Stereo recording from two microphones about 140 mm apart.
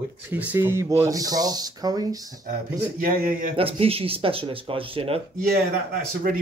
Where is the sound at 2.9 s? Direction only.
90° right.